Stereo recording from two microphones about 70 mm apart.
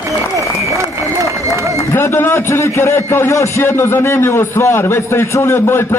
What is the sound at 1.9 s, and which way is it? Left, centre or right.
A man's voice, left.